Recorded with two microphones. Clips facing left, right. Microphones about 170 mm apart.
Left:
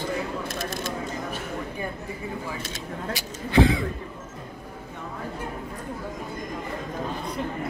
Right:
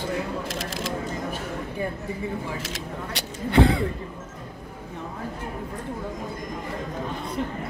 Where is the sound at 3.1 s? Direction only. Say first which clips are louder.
Right 3 dB; 65° right (ahead or behind).